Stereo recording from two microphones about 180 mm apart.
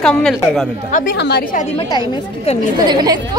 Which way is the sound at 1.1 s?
70° left (ahead or behind).